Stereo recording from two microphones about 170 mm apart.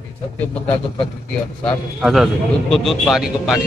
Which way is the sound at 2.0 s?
Centre (ahead or behind).